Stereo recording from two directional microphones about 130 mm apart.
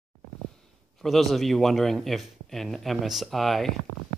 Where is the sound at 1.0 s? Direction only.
Centre (ahead or behind).